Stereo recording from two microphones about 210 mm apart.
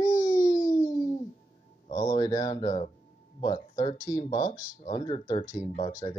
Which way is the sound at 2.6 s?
35° left (ahead or behind).